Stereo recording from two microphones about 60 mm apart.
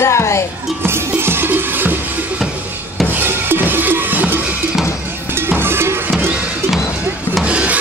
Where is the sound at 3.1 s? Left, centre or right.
Right.